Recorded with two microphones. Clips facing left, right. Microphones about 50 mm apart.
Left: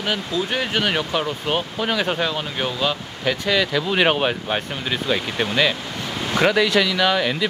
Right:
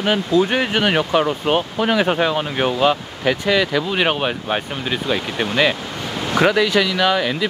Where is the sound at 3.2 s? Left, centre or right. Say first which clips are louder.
Right 2 dB; centre.